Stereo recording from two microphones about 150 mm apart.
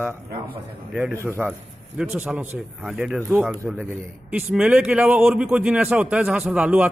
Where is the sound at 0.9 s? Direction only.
5° right (ahead or behind).